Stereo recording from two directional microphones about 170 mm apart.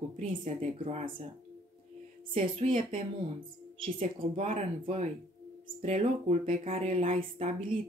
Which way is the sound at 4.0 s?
45° right (ahead or behind).